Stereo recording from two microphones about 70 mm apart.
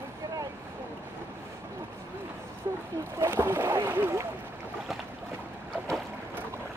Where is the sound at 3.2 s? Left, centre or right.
Right.